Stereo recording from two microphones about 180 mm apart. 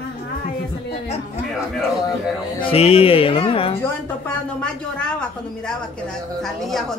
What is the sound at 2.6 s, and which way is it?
Speech, 35° left (ahead or behind).